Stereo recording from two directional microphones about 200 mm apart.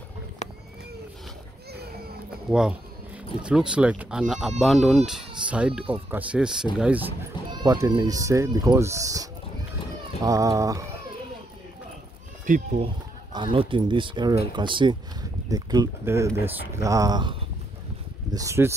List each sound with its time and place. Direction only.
1.7 s children playing: 55° right (ahead or behind)
2.5 s speech: 5° right (ahead or behind)
7.5 s speech: 15° right (ahead or behind)
12.4 s speech: 35° right (ahead or behind)
13.3 s speech: 25° right (ahead or behind)